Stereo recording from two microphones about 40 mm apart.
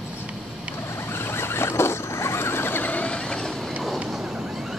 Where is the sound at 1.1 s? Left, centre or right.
Left.